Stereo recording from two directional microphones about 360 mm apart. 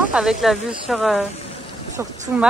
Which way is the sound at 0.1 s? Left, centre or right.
Centre.